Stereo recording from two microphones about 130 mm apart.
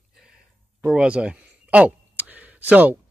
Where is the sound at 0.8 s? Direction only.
10° right (ahead or behind).